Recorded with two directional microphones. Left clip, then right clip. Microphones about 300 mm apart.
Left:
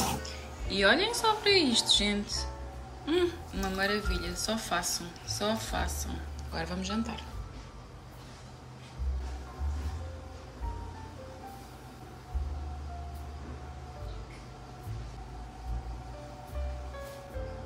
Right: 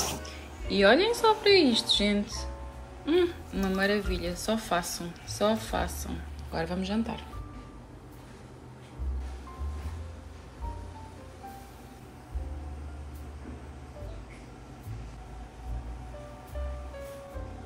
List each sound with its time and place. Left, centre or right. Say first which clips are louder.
0.2 s a woman's voice: even; centre